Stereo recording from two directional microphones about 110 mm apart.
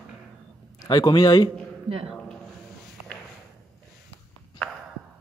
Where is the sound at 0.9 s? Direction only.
40° left (ahead or behind).